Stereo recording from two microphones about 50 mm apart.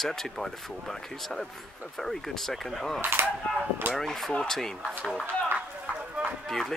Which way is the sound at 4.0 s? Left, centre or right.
Centre.